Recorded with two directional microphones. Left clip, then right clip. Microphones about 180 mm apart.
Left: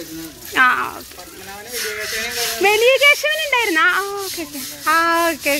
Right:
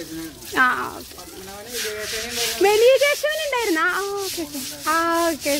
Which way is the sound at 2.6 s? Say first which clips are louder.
Left 2 dB; 25° right (ahead or behind).